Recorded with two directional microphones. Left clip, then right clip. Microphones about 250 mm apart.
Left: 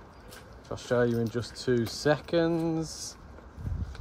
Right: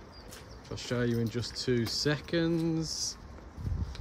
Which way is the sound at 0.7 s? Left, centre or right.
Centre.